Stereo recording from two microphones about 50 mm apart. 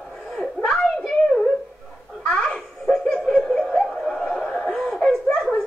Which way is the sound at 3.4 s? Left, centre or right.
Centre.